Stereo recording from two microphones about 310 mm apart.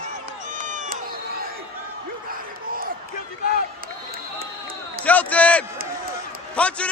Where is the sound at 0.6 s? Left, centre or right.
Right.